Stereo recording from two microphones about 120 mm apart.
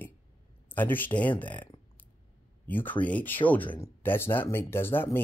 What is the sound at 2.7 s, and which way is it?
Speech, 15° left (ahead or behind).